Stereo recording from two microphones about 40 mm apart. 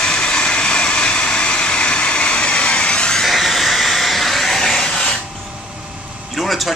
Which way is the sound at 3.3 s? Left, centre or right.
Centre.